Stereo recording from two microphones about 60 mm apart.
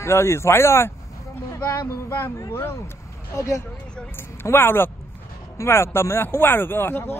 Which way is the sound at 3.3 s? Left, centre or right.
Left.